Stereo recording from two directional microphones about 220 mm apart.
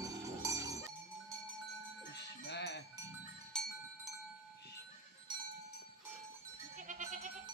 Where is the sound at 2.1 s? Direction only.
50° left (ahead or behind).